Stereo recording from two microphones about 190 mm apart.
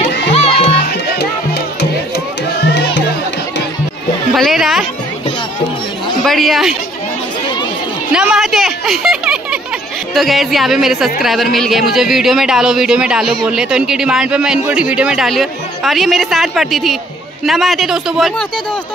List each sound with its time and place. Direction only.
0.3 s music: 35° left (ahead or behind)
1.1 s music: 60° left (ahead or behind)
4.3 s speech: centre (ahead or behind)
6.2 s speech: centre (ahead or behind)
8.1 s a man's voice: 5° right (ahead or behind)